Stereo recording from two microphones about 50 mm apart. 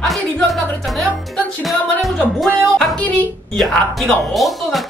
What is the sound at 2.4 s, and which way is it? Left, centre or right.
Speech, centre.